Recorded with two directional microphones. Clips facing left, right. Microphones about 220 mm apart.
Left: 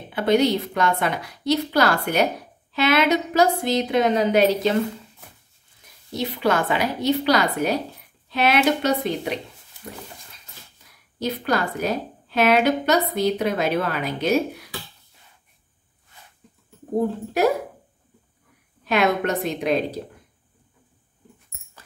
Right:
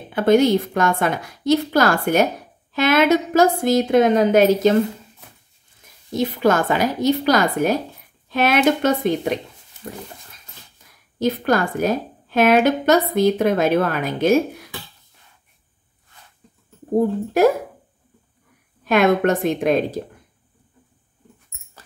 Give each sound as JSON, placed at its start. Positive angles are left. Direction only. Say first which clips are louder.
{"t": 0.1, "sound": "a woman's voice", "louder": "right 4 dB", "side_deg": -50}
{"t": 6.1, "sound": "a woman's voice", "louder": "right 4 dB", "side_deg": -45}
{"t": 11.1, "sound": "a woman's voice", "louder": "right 5 dB", "side_deg": -50}
{"t": 18.9, "sound": "a woman's voice", "louder": "right 5 dB", "side_deg": -50}